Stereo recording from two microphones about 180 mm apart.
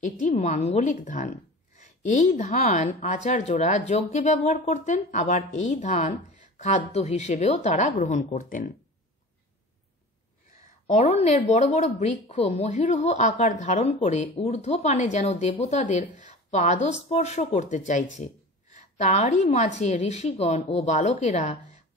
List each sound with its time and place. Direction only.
0.0 s a woman's voice: 45° left (ahead or behind)
10.9 s a woman's voice: 35° left (ahead or behind)